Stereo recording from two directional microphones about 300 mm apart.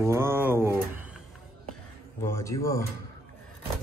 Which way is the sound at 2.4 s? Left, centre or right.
Centre.